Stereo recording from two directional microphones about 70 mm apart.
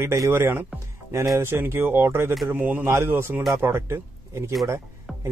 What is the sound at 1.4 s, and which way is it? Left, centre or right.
Speech, right.